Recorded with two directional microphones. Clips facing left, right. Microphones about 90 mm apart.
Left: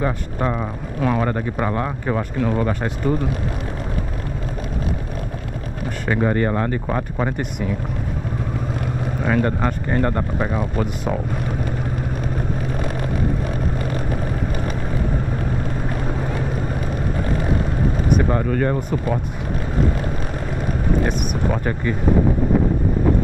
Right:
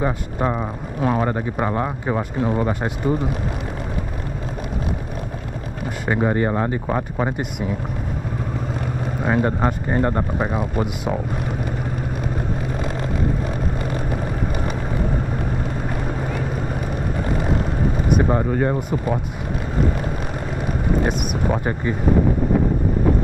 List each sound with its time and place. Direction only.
0.0 s speech: 15° right (ahead or behind)
6.0 s speech: 20° right (ahead or behind)
9.3 s speech: 20° right (ahead or behind)
18.3 s speech: 20° right (ahead or behind)
21.0 s a sound: 20° right (ahead or behind)